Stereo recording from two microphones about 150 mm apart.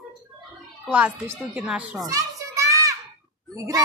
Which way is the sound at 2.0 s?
25° right (ahead or behind).